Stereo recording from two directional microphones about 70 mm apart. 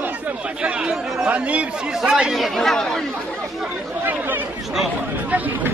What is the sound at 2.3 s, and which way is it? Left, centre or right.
Speech, centre.